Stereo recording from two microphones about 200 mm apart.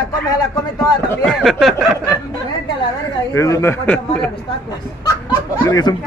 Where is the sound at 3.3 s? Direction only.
15° left (ahead or behind).